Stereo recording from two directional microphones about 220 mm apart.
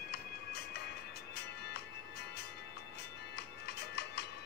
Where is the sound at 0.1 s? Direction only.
45° left (ahead or behind).